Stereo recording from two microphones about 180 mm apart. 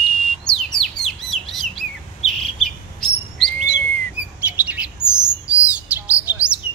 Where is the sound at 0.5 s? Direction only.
5° left (ahead or behind).